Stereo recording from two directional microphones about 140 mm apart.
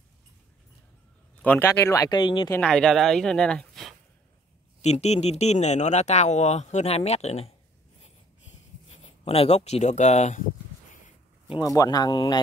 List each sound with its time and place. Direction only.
1.4 s speech: 15° left (ahead or behind)
2.0 s speech: 30° left (ahead or behind)
2.6 s speech: 5° left (ahead or behind)
4.8 s speech: 50° left (ahead or behind)
9.2 s speech: 45° left (ahead or behind)
11.6 s speech: 25° left (ahead or behind)